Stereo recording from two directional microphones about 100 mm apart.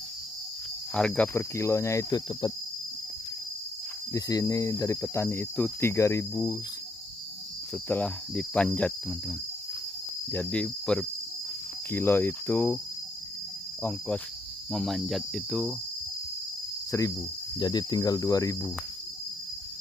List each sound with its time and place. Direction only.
0.9 s cricket: 10° left (ahead or behind)
1.3 s cricket: 30° left (ahead or behind)
4.1 s cricket: 35° left (ahead or behind)
7.7 s speech: 20° left (ahead or behind)
8.4 s cricket: 10° left (ahead or behind)
10.3 s cricket: 10° left (ahead or behind)
11.9 s speech: 20° left (ahead or behind)
13.8 s cricket: 15° left (ahead or behind)
14.7 s cricket: centre (ahead or behind)
16.9 s speech: 30° left (ahead or behind)
17.6 s cricket: 45° left (ahead or behind)